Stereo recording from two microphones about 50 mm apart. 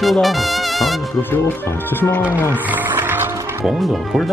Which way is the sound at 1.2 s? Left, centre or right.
Left.